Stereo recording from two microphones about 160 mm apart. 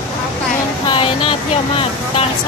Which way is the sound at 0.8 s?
35° left (ahead or behind).